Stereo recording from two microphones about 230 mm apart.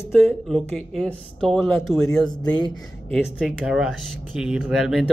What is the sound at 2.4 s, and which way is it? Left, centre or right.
Speech, centre.